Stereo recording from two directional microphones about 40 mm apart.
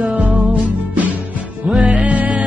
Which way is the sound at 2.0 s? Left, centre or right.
Right.